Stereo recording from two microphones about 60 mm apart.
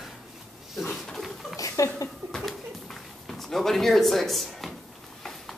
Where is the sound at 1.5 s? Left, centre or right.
Left.